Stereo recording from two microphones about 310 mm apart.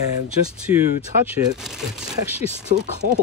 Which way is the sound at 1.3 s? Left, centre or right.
Centre.